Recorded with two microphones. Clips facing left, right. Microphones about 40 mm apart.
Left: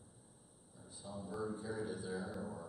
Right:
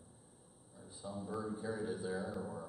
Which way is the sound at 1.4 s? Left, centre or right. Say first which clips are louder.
Even; centre.